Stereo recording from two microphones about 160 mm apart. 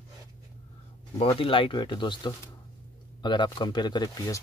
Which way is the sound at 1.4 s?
35° left (ahead or behind).